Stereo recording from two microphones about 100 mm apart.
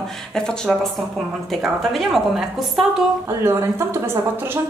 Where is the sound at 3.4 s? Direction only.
30° right (ahead or behind).